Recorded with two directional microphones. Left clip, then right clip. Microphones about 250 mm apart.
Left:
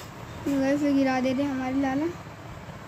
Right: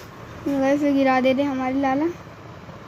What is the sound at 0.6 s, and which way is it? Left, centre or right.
Speech, centre.